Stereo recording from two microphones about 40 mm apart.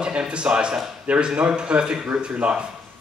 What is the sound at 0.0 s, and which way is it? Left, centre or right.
A man's voice, right.